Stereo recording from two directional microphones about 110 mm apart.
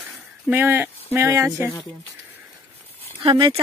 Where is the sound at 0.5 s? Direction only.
20° right (ahead or behind).